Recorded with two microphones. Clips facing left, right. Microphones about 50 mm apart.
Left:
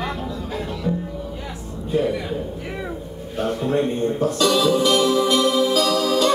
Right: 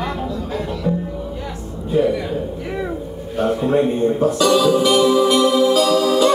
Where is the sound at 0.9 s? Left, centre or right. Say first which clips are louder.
Right 3 dB; centre.